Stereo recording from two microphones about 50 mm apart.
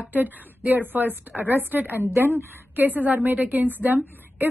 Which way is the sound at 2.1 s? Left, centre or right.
Right.